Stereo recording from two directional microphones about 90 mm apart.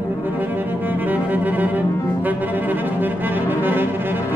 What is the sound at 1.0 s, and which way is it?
Music, 20° right (ahead or behind).